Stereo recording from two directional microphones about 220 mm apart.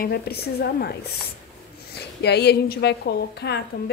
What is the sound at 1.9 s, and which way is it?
Speech, 50° left (ahead or behind).